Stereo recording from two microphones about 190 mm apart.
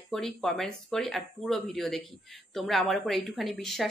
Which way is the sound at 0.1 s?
Centre (ahead or behind).